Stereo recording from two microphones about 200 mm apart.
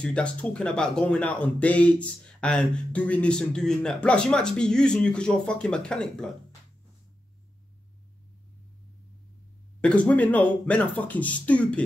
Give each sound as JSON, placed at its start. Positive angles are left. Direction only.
{"t": 0.0, "sound": "speech", "side_deg": 5}
{"t": 9.8, "sound": "speech", "side_deg": 5}